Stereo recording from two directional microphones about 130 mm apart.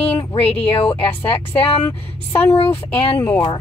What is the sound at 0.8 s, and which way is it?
Speech, 45° left (ahead or behind).